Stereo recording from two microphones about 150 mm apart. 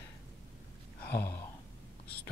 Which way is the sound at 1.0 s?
90° left.